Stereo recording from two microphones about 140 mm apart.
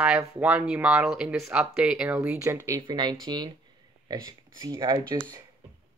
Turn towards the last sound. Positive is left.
turn(degrees=-25)  # may be behind; listen again after turning